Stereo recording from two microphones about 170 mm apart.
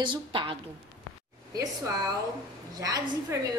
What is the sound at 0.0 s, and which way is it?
Speech, 30° right (ahead or behind).